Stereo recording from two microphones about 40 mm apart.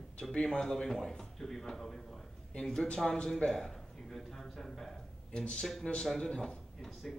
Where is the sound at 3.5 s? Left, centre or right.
Centre.